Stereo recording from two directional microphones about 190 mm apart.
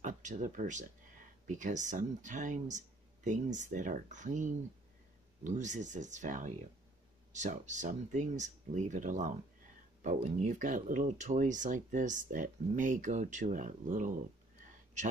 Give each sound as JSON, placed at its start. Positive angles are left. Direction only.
{"t": 0.0, "sound": "speech", "side_deg": -40}